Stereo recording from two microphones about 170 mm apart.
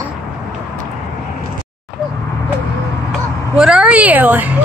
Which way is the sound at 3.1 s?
5° right (ahead or behind).